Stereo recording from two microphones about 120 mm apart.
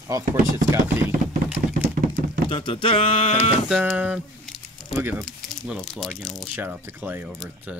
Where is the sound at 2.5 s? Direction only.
45° left (ahead or behind).